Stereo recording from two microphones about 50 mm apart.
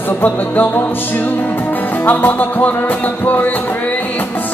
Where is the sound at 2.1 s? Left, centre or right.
Left.